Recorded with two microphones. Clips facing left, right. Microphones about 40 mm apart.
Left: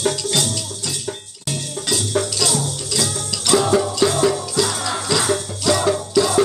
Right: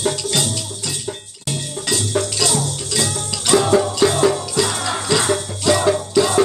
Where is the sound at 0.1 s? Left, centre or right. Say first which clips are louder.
Even; centre.